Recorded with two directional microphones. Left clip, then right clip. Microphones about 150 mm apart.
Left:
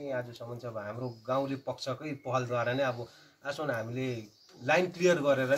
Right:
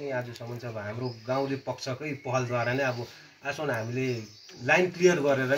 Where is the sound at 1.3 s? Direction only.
20° left (ahead or behind).